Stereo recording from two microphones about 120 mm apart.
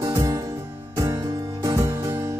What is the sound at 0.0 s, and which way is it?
Music, 25° right (ahead or behind).